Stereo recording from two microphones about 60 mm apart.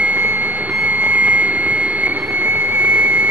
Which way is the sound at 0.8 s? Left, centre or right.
Right.